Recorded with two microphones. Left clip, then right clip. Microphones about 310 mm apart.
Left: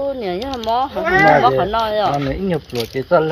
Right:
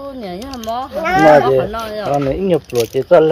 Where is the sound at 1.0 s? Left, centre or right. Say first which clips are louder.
Right 4 dB; right.